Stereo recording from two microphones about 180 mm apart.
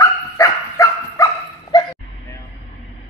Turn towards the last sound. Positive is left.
turn(degrees=20)  # may be behind; listen again after turning